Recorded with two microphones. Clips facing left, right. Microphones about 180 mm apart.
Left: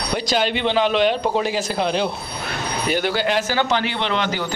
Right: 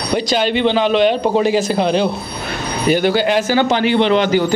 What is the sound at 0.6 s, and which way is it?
A man's voice, 10° left (ahead or behind).